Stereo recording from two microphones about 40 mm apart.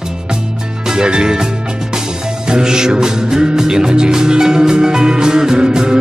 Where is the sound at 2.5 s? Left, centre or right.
Centre.